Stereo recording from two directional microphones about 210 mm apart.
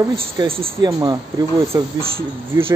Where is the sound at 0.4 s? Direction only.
25° right (ahead or behind).